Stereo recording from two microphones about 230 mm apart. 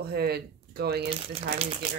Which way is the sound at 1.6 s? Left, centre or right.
Right.